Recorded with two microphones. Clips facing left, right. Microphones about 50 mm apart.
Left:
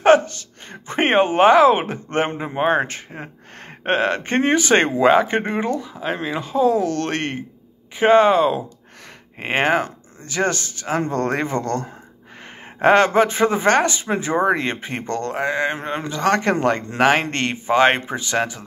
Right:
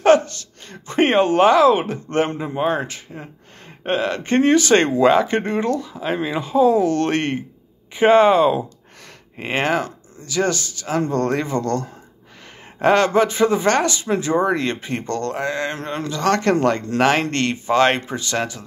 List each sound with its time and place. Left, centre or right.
0.0 s speech: left
6.1 s speech: centre
9.4 s speech: left